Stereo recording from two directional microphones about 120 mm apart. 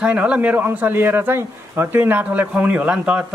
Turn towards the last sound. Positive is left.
turn(degrees=-10)  # may be behind; listen again after turning